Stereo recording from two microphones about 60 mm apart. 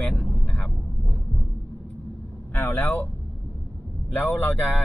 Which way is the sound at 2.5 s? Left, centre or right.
Left.